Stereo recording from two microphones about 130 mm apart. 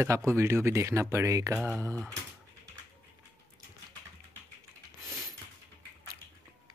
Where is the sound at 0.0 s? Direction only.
20° right (ahead or behind).